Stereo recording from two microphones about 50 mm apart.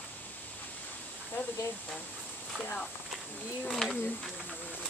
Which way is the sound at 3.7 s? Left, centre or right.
Centre.